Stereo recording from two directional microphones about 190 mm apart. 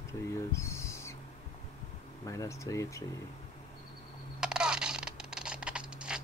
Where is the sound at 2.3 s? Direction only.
15° left (ahead or behind).